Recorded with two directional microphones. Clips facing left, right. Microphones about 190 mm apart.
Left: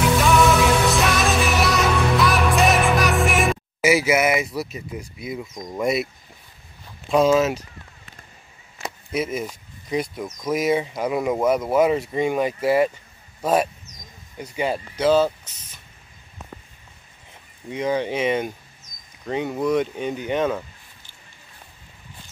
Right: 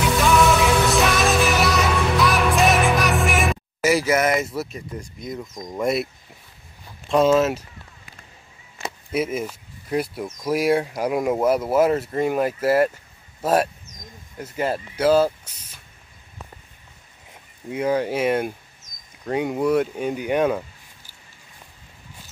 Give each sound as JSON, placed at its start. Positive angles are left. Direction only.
{"t": 0.0, "sound": "music", "side_deg": 0}
{"t": 4.5, "sound": "speech", "side_deg": 0}
{"t": 7.1, "sound": "speech", "side_deg": 0}
{"t": 9.1, "sound": "speech", "side_deg": -10}
{"t": 13.9, "sound": "a sound", "side_deg": -50}
{"t": 14.3, "sound": "speech", "side_deg": 0}
{"t": 17.6, "sound": "speech", "side_deg": -5}